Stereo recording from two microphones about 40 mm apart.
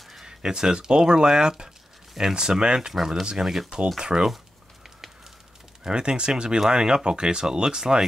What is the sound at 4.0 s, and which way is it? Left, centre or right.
Speech, centre.